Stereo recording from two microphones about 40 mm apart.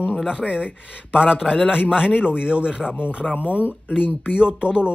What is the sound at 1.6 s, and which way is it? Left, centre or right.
A man's voice, right.